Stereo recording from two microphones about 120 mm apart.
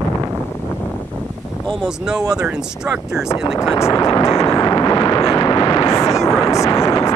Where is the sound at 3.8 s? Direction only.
25° left (ahead or behind); by 5.2 s 40° left (ahead or behind).